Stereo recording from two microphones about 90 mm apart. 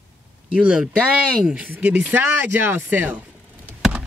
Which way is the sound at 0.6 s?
10° right (ahead or behind).